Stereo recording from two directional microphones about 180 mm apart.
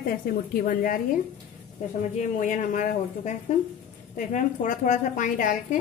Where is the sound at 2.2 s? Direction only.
45° left (ahead or behind).